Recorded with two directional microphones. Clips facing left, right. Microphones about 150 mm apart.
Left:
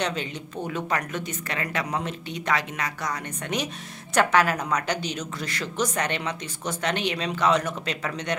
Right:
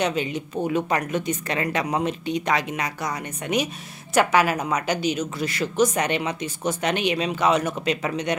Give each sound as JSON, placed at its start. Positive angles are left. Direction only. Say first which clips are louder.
{"t": 0.0, "sound": "a woman's voice", "louder": "right 5 dB", "side_deg": -10}